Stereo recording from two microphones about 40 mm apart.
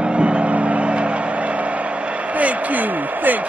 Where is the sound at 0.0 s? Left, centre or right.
Right.